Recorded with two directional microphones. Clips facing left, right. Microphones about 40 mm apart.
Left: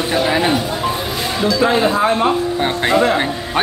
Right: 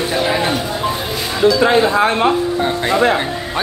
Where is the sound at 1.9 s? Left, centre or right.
Right.